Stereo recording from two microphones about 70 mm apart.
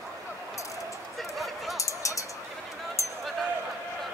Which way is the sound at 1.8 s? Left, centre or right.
Left.